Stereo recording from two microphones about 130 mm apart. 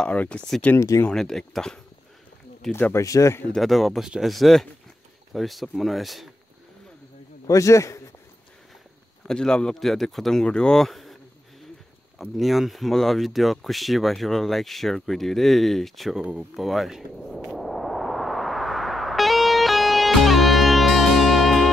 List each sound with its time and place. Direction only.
0.0 s speech: 10° left (ahead or behind)
0.7 s speech: 25° left (ahead or behind)
1.1 s speech: 5° left (ahead or behind)
2.7 s speech: 20° left (ahead or behind)
3.4 s speech: centre (ahead or behind)
7.4 s a man's voice: 25° left (ahead or behind)
9.3 s speech: 5° left (ahead or behind)
12.2 s a sound: centre (ahead or behind)